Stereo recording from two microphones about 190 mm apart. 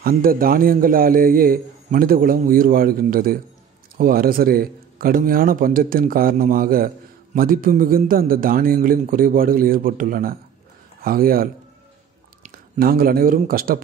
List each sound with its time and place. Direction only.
0.2 s a man's voice: 50° right (ahead or behind)
12.4 s speech: 50° right (ahead or behind)